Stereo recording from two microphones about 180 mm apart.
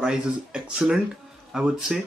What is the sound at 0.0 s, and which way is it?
Speech, 5° right (ahead or behind).